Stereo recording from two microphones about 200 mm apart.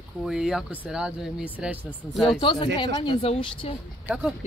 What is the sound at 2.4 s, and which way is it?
Speech, 25° left (ahead or behind).